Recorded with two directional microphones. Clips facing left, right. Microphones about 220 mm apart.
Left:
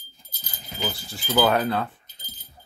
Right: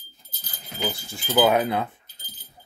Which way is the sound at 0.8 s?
15° right (ahead or behind).